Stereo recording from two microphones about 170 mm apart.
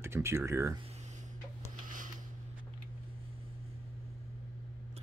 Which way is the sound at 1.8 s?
50° right (ahead or behind).